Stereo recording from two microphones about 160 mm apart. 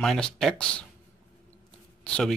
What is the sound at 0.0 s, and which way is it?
Speech, 5° left (ahead or behind).